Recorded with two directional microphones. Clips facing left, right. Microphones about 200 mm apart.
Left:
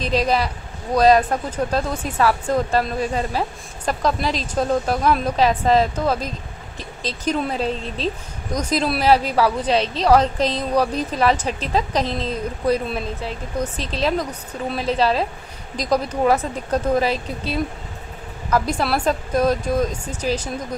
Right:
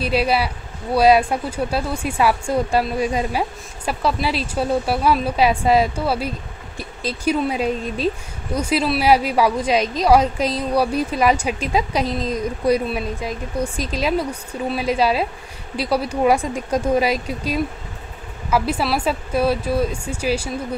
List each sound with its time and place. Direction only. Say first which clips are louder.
0.0 s speech: right 1 dB; 10° right (ahead or behind)